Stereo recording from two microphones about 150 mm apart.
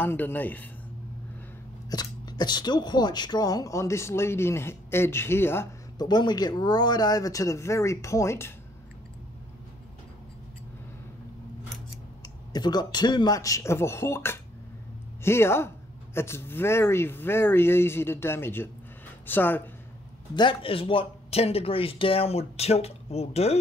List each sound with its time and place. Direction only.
0.0 s speech: 15° left (ahead or behind)
1.9 s speech: 25° left (ahead or behind)
5.9 s speech: 30° left (ahead or behind)
12.2 s speech: 30° left (ahead or behind); by 19.6 s 15° left (ahead or behind)
20.3 s speech: 35° left (ahead or behind)